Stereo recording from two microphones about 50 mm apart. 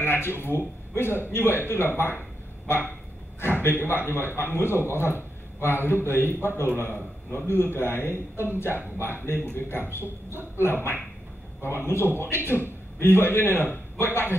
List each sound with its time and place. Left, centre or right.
0.0 s a sound: left
0.4 s a man's voice: left
2.7 s dog: left
3.8 s a man's voice: left